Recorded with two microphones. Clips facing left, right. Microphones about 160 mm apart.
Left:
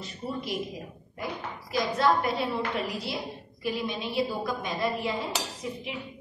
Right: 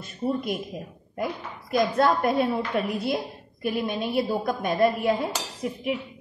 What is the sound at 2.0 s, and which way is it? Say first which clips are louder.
A woman's voice: right 2 dB; 50° right (ahead or behind).